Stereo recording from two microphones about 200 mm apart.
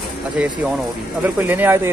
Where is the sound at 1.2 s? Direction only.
10° right (ahead or behind).